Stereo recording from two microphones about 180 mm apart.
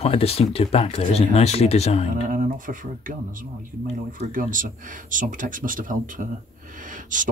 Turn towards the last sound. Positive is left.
turn(degrees=-45)  # may be behind; listen again after turning